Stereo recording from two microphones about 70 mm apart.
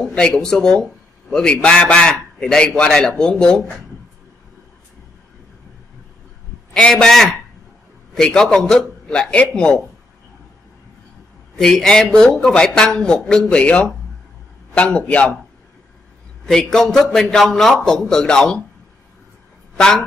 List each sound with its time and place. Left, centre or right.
0.1 s a man's voice: centre
6.7 s a man's voice: centre
11.5 s a man's voice: centre
16.4 s a man's voice: centre